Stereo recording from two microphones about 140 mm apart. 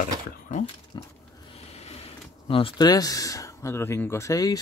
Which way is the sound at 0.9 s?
35° left (ahead or behind).